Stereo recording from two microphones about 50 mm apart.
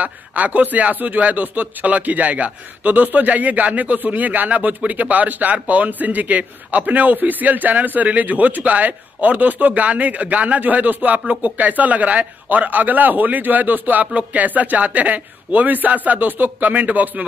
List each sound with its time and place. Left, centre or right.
0.0 s speech: right